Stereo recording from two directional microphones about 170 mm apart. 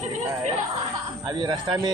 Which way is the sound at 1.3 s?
25° right (ahead or behind).